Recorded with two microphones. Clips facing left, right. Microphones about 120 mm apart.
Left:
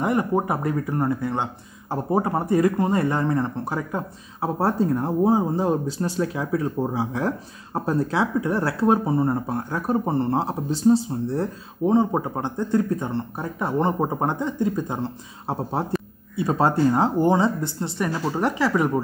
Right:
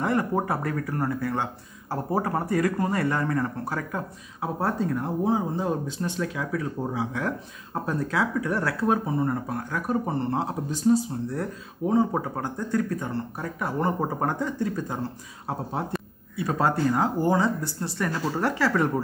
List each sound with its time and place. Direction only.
0.0 s speech: 20° left (ahead or behind)